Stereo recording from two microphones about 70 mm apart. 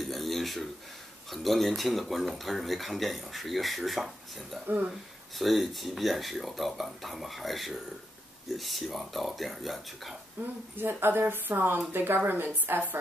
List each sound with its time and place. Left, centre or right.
0.0 s a sound: centre
1.3 s speech: centre
4.6 s speech: right
5.4 s speech: centre
10.4 s a woman's voice: right